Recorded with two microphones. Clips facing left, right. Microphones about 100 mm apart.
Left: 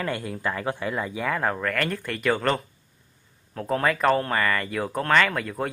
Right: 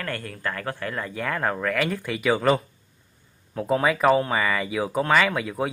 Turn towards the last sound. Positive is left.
turn(degrees=-5)  # may be behind; listen again after turning